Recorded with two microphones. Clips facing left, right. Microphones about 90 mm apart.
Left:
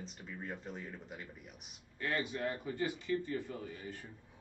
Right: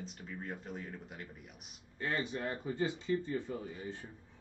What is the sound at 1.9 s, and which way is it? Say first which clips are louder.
Speech: even; 25° right (ahead or behind).